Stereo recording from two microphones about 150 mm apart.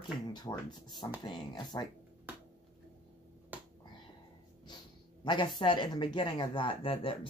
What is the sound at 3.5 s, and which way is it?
Finger snapping, 10° right (ahead or behind).